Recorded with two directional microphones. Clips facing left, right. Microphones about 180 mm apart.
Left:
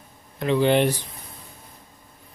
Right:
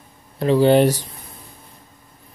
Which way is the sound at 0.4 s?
35° right (ahead or behind).